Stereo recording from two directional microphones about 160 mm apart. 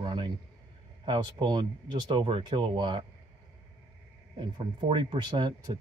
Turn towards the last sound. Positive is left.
turn(degrees=-30)  # may be behind; listen again after turning